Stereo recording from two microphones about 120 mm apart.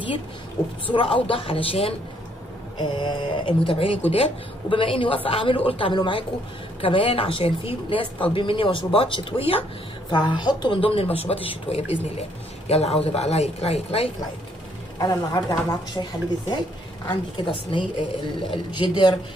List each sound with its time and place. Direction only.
0.9 s speech: 50° left (ahead or behind)
2.8 s speech: 40° left (ahead or behind)
10.1 s speech: 40° left (ahead or behind); by 14.1 s 55° left (ahead or behind)
15.0 s speech: 30° left (ahead or behind)